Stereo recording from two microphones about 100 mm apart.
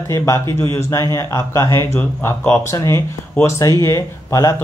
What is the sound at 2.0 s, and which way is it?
Speech, 20° left (ahead or behind).